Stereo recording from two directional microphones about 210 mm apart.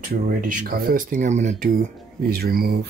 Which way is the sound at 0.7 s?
45° right (ahead or behind).